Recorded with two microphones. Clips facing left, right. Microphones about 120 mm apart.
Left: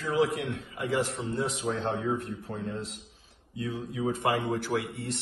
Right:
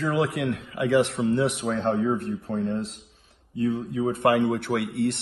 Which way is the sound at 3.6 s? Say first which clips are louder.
Right 7 dB; 55° right (ahead or behind).